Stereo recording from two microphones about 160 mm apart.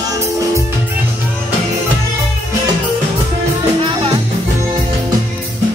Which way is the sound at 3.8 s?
30° right (ahead or behind).